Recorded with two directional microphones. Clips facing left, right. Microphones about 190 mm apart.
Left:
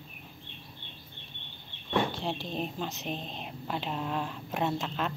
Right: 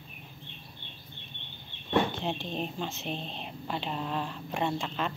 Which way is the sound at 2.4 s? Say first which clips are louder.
Even; 5° left (ahead or behind).